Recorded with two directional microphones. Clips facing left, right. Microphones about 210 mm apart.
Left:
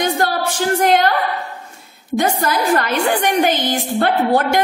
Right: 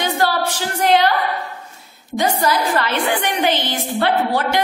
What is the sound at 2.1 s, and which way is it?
A woman's voice, 50° left (ahead or behind).